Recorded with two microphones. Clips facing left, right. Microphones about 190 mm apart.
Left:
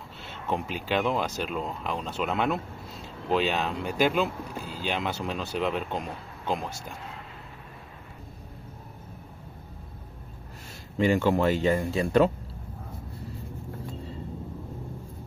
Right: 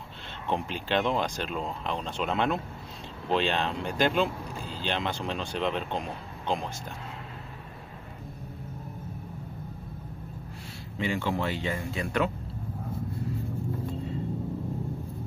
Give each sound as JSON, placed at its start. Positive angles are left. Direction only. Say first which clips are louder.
{"t": 0.5, "sound": "speech", "louder": "even", "side_deg": 5}
{"t": 11.0, "sound": "speech", "louder": "left 7 dB", "side_deg": 45}